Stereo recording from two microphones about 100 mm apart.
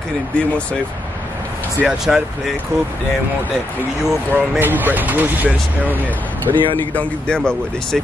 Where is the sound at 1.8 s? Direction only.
5° right (ahead or behind).